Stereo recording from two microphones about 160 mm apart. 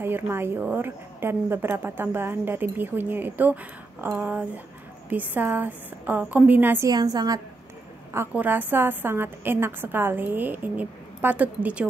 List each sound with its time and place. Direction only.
0.0 s a woman's voice: 15° right (ahead or behind)
6.9 s a woman's voice: 25° right (ahead or behind); by 11.9 s 10° right (ahead or behind)